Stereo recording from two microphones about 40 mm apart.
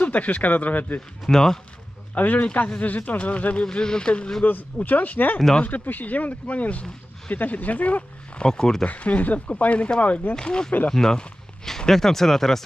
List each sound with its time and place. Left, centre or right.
0.0 s speech: left
1.2 s speech: centre
2.1 s speech: left
3.7 s speech: centre
4.4 s speech: left
8.5 s speech: centre
8.8 s speech: left
10.3 s speech: centre